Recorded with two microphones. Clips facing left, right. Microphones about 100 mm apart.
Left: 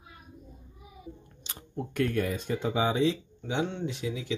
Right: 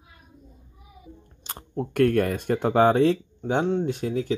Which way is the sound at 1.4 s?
50° right (ahead or behind).